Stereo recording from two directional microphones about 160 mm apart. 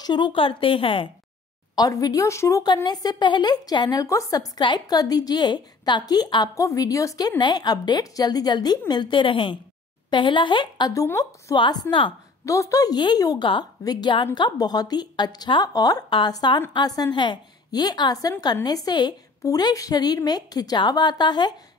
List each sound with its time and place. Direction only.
0.0 s a woman's voice: 30° left (ahead or behind)
1.8 s speech: 25° left (ahead or behind)
11.5 s a woman's voice: 30° left (ahead or behind)
12.4 s speech: 20° left (ahead or behind)